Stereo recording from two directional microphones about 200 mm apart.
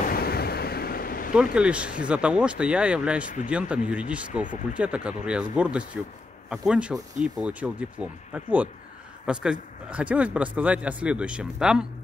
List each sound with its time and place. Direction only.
0.0 s waves: 50° left (ahead or behind)
1.3 s speech: 5° right (ahead or behind)